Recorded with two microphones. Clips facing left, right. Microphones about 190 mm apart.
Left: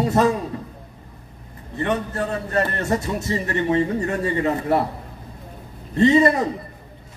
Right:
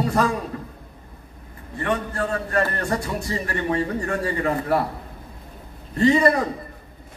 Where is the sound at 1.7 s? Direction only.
20° left (ahead or behind).